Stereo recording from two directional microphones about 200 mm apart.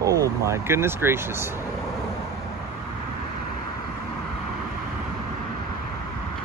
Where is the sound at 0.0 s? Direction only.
15° right (ahead or behind).